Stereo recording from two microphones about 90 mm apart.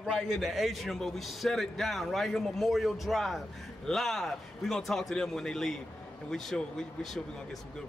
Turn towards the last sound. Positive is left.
turn(degrees=5)  # may be behind; listen again after turning